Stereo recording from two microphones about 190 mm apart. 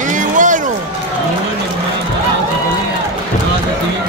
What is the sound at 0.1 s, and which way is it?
Music, 40° right (ahead or behind).